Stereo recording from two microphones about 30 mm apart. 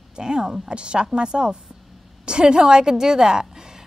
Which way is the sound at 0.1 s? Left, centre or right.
Right.